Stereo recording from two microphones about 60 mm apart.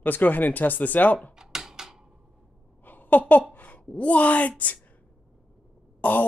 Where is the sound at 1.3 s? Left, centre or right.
Centre.